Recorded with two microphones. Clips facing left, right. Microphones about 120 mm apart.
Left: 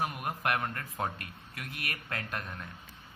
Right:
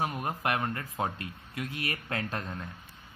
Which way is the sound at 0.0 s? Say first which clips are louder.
Right 2 dB; 25° right (ahead or behind).